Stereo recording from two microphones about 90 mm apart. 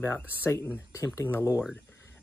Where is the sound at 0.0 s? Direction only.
25° left (ahead or behind).